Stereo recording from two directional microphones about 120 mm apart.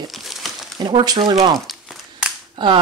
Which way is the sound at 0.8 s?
35° right (ahead or behind).